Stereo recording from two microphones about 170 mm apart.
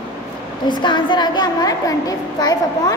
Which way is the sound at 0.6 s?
25° left (ahead or behind).